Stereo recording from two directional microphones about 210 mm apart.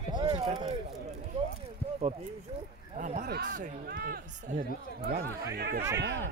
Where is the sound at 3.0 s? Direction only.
35° right (ahead or behind).